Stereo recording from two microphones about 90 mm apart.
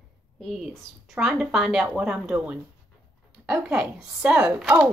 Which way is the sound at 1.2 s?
5° right (ahead or behind).